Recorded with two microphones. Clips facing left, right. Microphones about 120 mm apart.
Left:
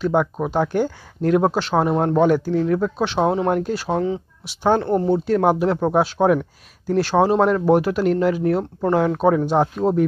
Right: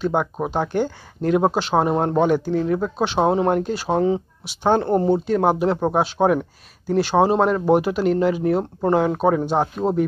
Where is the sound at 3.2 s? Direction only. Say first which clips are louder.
Right 2 dB; 20° right (ahead or behind).